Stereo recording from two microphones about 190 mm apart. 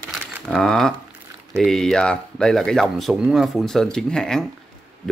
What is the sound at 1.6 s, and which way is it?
Speech, centre (ahead or behind).